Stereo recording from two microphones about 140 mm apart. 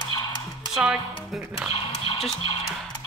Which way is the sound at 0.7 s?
5° right (ahead or behind).